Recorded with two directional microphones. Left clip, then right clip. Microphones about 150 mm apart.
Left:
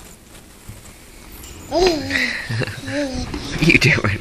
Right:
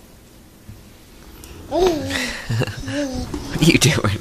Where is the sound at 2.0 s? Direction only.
25° right (ahead or behind).